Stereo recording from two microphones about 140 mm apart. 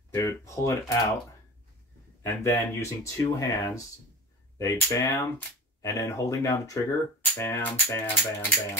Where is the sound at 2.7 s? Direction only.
20° left (ahead or behind).